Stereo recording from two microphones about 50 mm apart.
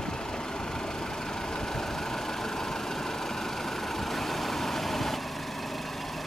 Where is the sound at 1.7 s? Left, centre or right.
Centre.